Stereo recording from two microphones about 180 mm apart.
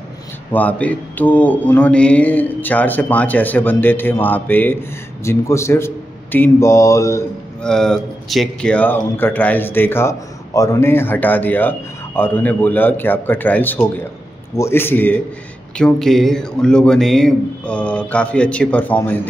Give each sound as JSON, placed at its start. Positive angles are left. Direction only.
{"t": 0.5, "sound": "speech", "side_deg": 10}
{"t": 7.6, "sound": "speech", "side_deg": 5}